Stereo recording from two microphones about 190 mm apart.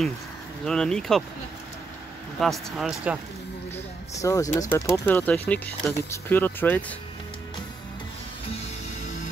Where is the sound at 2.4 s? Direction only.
Centre (ahead or behind).